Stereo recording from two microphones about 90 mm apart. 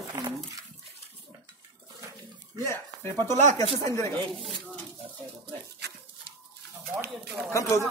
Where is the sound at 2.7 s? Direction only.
30° left (ahead or behind).